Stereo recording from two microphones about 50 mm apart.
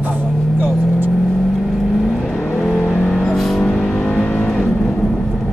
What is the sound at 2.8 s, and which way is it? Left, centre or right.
Vehicle, centre.